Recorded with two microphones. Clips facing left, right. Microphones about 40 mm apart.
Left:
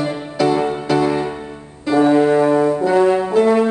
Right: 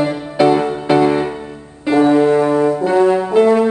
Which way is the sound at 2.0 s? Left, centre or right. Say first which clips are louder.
Even; centre.